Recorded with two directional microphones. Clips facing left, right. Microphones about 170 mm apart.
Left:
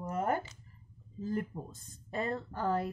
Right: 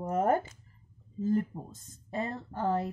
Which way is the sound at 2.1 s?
20° right (ahead or behind).